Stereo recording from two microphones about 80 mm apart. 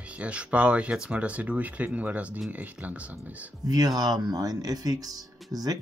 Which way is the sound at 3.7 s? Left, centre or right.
Right.